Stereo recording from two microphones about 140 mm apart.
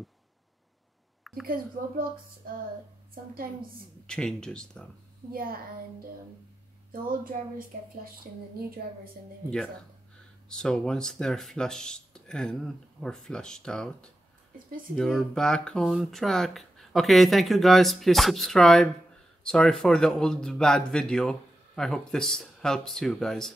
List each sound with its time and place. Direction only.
1.3 s a sound: centre (ahead or behind)
4.0 s speech: 5° left (ahead or behind)
5.3 s speech: 90° right
6.9 s speech: 90° right
10.5 s speech: 5° left (ahead or behind)